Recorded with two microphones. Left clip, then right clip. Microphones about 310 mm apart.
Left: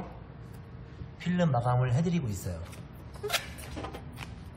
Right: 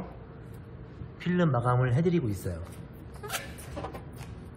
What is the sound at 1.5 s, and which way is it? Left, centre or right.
Speech, left.